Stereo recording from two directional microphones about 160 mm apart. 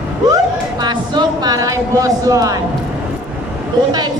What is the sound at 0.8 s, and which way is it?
A man's voice, 25° right (ahead or behind).